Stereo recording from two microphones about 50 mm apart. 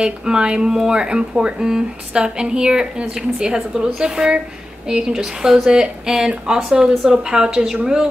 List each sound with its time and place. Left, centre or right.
0.0 s speech: centre